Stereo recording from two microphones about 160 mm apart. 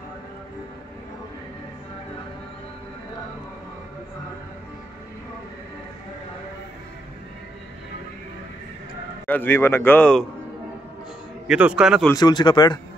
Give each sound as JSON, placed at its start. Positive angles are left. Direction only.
{"t": 9.2, "sound": "a man's voice", "side_deg": 10}
{"t": 11.4, "sound": "a man's voice", "side_deg": -5}
{"t": 12.1, "sound": "speech", "side_deg": 25}